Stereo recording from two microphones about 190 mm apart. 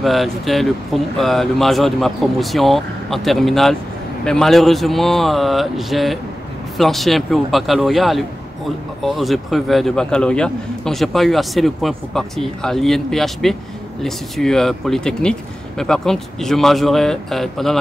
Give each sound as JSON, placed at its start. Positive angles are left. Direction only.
{"t": 0.0, "sound": "a man's voice", "side_deg": 0}